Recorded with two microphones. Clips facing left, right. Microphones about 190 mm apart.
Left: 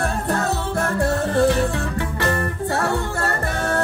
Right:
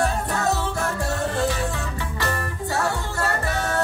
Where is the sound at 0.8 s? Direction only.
60° left (ahead or behind).